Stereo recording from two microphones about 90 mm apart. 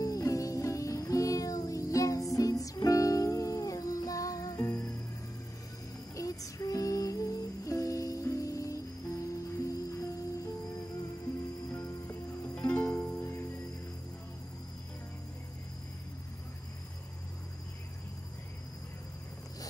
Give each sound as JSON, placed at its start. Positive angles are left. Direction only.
{"t": 0.0, "sound": "music", "side_deg": 40}
{"t": 6.1, "sound": "music", "side_deg": 40}
{"t": 12.5, "sound": "music", "side_deg": 15}
{"t": 13.2, "sound": "music", "side_deg": 25}